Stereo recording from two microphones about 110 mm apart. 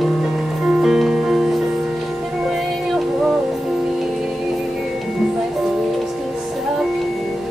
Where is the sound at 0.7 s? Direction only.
5° right (ahead or behind).